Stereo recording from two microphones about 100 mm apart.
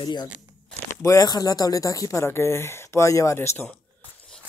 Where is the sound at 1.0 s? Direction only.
35° left (ahead or behind).